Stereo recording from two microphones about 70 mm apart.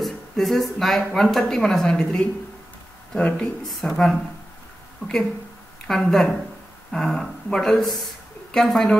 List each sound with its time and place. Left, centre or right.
0.0 s speech: centre
3.8 s speech: centre
5.9 s speech: centre